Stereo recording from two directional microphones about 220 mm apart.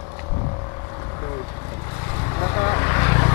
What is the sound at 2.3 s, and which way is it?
Vehicle, 20° left (ahead or behind).